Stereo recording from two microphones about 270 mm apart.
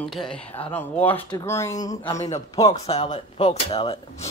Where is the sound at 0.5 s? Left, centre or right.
Left.